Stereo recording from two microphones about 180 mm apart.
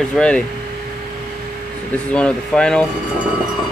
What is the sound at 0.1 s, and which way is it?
Speech, 5° left (ahead or behind).